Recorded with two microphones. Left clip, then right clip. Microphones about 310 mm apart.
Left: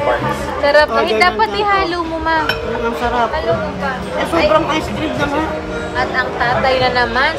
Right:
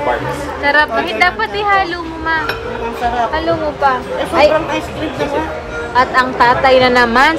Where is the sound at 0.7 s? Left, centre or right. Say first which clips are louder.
Left 1 dB; centre.